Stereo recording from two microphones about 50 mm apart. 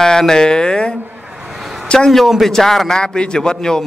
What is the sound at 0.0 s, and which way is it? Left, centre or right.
A man's voice, centre.